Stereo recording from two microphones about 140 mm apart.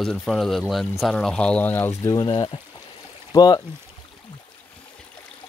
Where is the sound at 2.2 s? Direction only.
35° left (ahead or behind).